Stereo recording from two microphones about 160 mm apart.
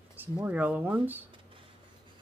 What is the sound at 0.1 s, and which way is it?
Speech, 10° right (ahead or behind).